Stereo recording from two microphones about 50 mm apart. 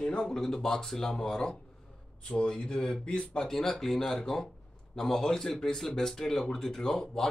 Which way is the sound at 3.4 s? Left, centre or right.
Centre.